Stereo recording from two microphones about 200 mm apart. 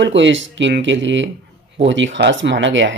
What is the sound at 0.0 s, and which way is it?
Speech, 65° right (ahead or behind).